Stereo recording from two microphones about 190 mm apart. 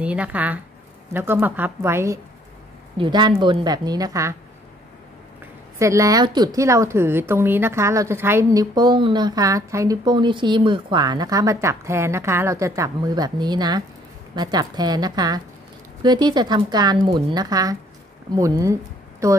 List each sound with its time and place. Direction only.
0.0 s a woman's voice: 5° right (ahead or behind)
5.8 s a woman's voice: 15° right (ahead or behind)